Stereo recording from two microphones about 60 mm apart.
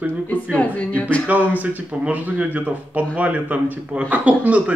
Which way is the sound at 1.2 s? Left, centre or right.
Right.